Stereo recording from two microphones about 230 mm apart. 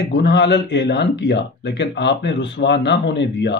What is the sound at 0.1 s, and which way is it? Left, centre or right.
Speech, left.